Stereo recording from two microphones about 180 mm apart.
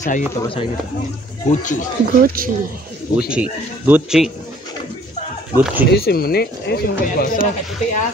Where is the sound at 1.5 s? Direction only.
45° left (ahead or behind).